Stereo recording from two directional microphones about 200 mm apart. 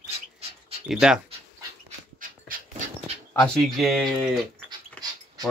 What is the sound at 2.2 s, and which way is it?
Dog, 40° right (ahead or behind).